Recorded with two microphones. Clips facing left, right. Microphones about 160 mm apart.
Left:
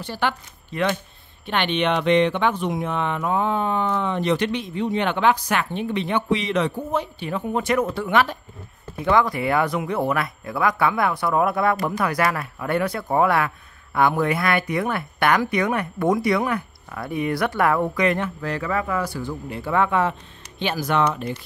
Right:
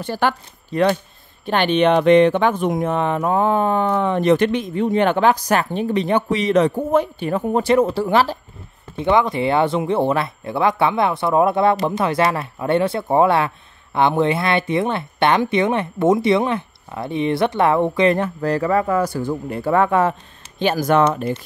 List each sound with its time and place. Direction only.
0.0 s speech: 45° right (ahead or behind)
7.6 s speech: 30° right (ahead or behind)